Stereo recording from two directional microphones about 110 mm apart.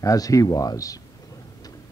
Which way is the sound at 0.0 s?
30° left (ahead or behind).